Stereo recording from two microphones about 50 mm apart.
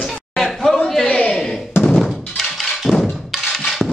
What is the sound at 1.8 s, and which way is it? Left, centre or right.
Thunk, left.